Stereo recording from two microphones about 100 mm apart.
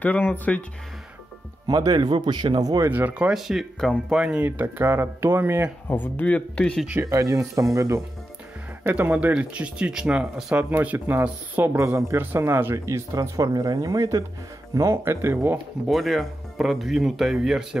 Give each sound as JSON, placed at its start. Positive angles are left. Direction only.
{"t": 0.0, "sound": "speech", "side_deg": 15}
{"t": 1.7, "sound": "speech", "side_deg": -40}
{"t": 2.9, "sound": "speech", "side_deg": -15}
{"t": 5.9, "sound": "speech", "side_deg": 20}
{"t": 7.1, "sound": "speech", "side_deg": -35}
{"t": 8.8, "sound": "speech", "side_deg": -15}
{"t": 15.5, "sound": "speech", "side_deg": 0}